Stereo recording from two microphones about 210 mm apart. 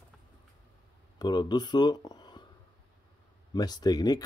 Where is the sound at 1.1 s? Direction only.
20° left (ahead or behind).